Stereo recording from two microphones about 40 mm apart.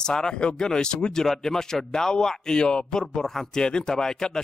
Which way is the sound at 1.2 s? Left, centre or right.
Centre.